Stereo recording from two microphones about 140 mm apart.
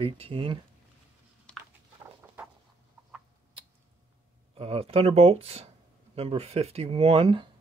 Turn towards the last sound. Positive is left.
turn(degrees=-40)  # may be behind; listen again after turning